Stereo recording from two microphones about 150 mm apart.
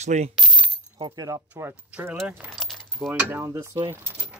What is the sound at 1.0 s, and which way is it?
Mechanisms, 25° right (ahead or behind).